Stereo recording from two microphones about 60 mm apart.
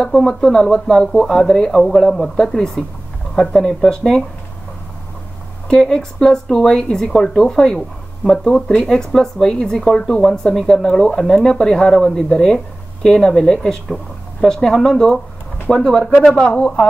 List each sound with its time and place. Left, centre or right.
0.0 s speech: centre
5.7 s speech: centre